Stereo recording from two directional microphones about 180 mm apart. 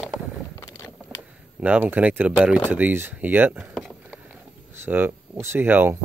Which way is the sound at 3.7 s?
Centre (ahead or behind).